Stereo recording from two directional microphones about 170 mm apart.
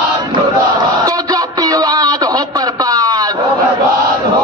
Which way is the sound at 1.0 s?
20° right (ahead or behind).